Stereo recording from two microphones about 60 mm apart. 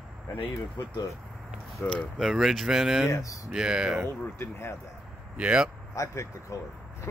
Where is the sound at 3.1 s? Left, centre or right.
Left.